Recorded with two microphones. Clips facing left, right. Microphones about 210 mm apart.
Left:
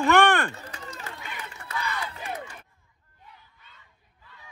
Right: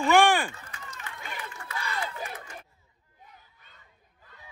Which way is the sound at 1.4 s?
35° right (ahead or behind).